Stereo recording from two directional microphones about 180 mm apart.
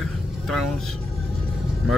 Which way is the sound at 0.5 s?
Centre (ahead or behind).